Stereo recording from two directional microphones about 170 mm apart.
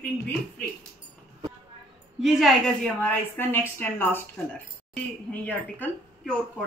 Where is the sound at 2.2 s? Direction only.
Centre (ahead or behind).